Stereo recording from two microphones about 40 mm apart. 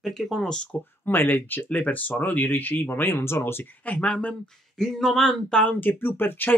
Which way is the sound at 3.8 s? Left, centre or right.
Left.